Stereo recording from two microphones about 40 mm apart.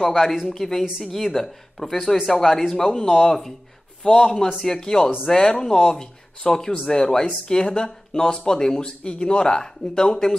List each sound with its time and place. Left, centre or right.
0.0 s a woman's voice: centre
9.0 s speech: left